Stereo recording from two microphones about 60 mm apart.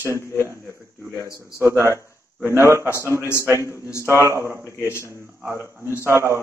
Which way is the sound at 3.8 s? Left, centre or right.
Left.